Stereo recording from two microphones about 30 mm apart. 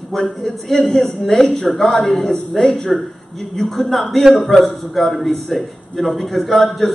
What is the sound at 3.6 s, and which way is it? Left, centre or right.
A man's voice, centre.